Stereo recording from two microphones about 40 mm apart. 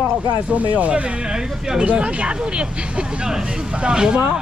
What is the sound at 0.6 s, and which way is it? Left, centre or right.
Speech, right.